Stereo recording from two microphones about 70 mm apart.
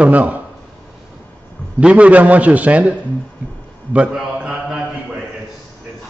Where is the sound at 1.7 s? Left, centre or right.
Centre.